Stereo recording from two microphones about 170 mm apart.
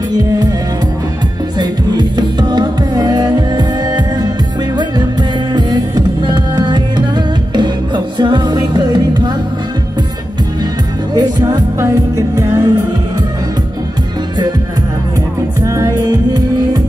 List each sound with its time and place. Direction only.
0.1 s music: 20° right (ahead or behind)
1.6 s music: 25° right (ahead or behind)
5.5 s music: 25° right (ahead or behind)
11.1 s music: 25° right (ahead or behind)
15.6 s music: 20° right (ahead or behind)